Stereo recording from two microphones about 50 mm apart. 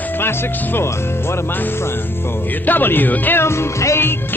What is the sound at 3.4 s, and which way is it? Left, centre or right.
Music, left.